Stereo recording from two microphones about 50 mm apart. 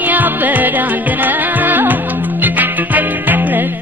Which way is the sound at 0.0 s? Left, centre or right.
Right.